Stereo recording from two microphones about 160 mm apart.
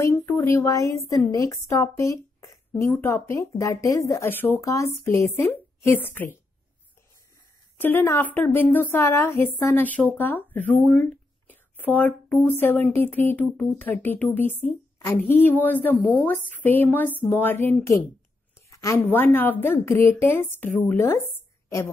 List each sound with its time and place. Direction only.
0.0 s a woman's voice: 20° left (ahead or behind)
7.8 s a woman's voice: 15° left (ahead or behind)